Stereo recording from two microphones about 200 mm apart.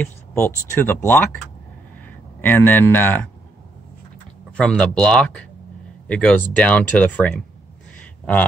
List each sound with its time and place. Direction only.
0.0 s speech: 10° left (ahead or behind)
4.6 s speech: 5° left (ahead or behind)